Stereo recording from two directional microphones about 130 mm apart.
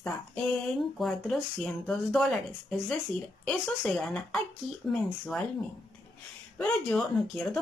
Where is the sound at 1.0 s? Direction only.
5° left (ahead or behind).